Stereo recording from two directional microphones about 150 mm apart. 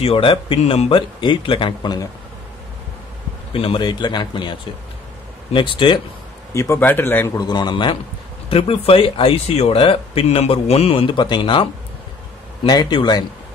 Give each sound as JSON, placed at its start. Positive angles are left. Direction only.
{"t": 0.0, "sound": "speech", "side_deg": 35}
{"t": 3.5, "sound": "speech", "side_deg": 35}
{"t": 6.5, "sound": "speech", "side_deg": 15}
{"t": 7.3, "sound": "a man's voice", "side_deg": 30}